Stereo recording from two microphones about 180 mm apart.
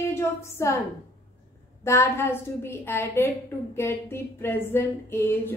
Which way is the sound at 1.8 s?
15° left (ahead or behind).